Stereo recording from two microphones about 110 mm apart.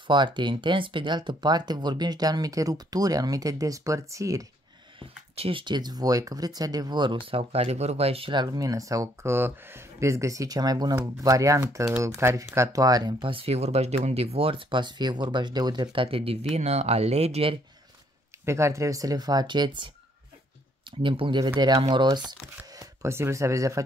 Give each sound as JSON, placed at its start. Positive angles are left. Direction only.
{"t": 0.0, "sound": "speech", "side_deg": -45}
{"t": 4.9, "sound": "speech", "side_deg": -60}
{"t": 13.2, "sound": "speech", "side_deg": -55}
{"t": 16.5, "sound": "speech", "side_deg": -80}
{"t": 18.4, "sound": "speech", "side_deg": -25}
{"t": 21.0, "sound": "speech", "side_deg": -50}
{"t": 22.8, "sound": "speech", "side_deg": -25}